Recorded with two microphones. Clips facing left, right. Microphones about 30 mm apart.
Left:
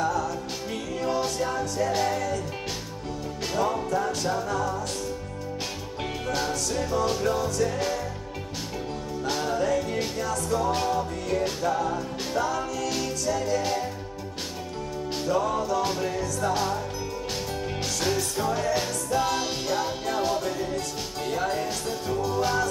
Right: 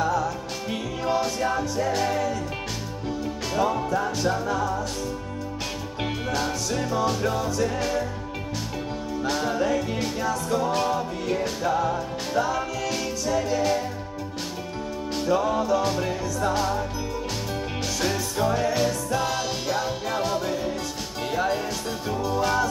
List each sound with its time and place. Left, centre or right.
0.0 s music: centre
3.5 s music: centre
6.4 s music: centre
9.5 s music: centre
15.2 s music: centre
15.8 s music: centre
18.0 s music: centre